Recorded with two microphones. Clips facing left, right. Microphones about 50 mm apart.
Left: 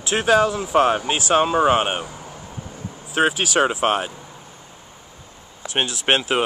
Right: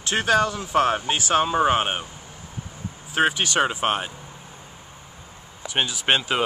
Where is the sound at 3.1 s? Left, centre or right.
Centre.